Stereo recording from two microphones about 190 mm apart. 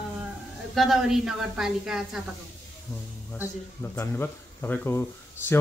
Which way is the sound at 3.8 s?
10° left (ahead or behind).